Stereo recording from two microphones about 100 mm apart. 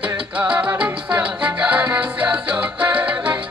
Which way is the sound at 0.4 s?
15° right (ahead or behind).